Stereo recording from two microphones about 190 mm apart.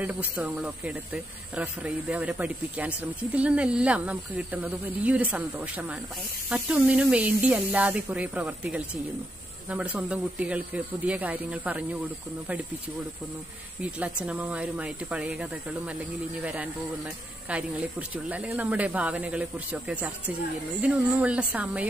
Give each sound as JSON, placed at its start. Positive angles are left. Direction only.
{"t": 0.0, "sound": "speech", "side_deg": -5}
{"t": 13.8, "sound": "speech", "side_deg": -5}
{"t": 17.5, "sound": "speech", "side_deg": -5}